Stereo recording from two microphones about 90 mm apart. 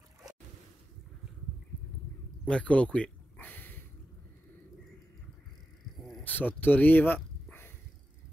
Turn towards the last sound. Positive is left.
turn(degrees=20)  # may be behind; listen again after turning